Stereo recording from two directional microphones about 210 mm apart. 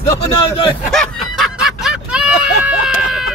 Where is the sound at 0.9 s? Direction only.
Centre (ahead or behind).